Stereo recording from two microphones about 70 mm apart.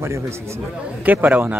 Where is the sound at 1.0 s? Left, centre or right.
Right.